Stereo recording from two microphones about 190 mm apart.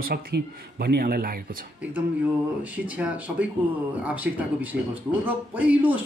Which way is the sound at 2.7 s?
10° right (ahead or behind).